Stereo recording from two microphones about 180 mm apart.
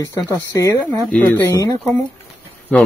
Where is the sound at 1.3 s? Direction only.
20° left (ahead or behind).